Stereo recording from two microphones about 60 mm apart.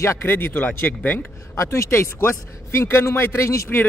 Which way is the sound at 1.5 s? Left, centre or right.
Left.